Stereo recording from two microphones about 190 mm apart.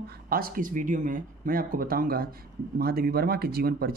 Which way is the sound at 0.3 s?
50° right (ahead or behind).